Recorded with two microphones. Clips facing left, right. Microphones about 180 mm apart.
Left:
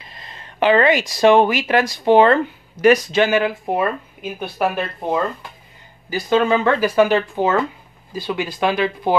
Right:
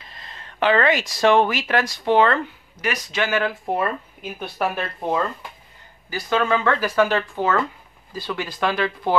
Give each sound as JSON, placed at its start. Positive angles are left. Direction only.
{"t": 0.6, "sound": "speech", "side_deg": 10}
{"t": 2.8, "sound": "speech", "side_deg": 30}
{"t": 6.0, "sound": "speech", "side_deg": 25}